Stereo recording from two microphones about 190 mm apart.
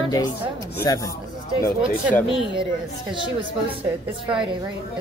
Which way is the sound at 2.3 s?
5° right (ahead or behind).